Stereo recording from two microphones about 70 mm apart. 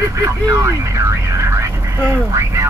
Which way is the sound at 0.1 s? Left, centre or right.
Right.